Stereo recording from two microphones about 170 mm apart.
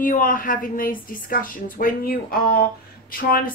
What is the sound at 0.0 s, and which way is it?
A woman's voice, 55° left (ahead or behind).